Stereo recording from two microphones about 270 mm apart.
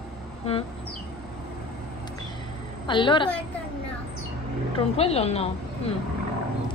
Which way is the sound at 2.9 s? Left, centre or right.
Centre.